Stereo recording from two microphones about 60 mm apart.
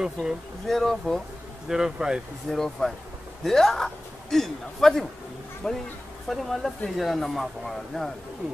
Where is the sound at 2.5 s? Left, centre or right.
Centre.